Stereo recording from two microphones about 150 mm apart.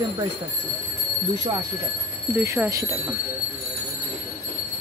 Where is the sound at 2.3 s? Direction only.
15° right (ahead or behind).